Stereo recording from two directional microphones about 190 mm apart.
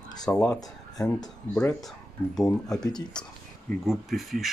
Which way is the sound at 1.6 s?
15° left (ahead or behind).